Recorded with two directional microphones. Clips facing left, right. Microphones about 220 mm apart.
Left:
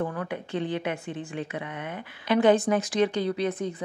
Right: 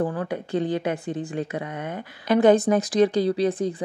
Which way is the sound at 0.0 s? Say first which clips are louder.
Right 4 dB; 35° right (ahead or behind).